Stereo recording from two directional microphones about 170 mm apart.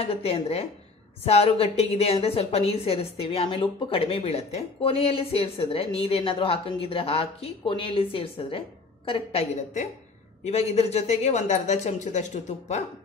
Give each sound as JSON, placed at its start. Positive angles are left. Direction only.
{"t": 0.0, "sound": "a woman's voice", "side_deg": 35}